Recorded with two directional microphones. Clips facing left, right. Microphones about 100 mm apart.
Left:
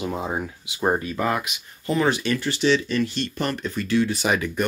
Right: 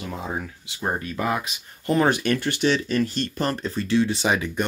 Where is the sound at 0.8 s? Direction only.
10° left (ahead or behind).